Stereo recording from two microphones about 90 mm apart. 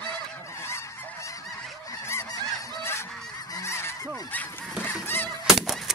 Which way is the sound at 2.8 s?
30° left (ahead or behind).